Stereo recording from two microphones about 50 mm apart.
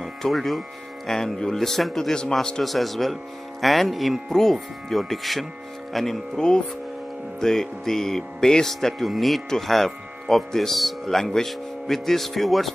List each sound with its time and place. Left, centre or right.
0.0 s speech: centre
2.6 s speech: centre
6.3 s speech: centre